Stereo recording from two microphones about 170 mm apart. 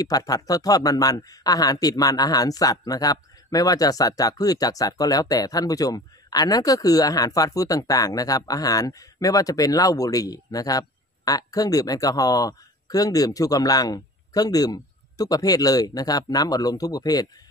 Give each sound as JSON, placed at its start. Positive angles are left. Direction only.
{"t": 0.0, "sound": "speech", "side_deg": 20}